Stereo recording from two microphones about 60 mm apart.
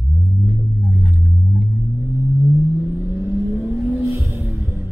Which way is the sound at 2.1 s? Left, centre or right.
Right.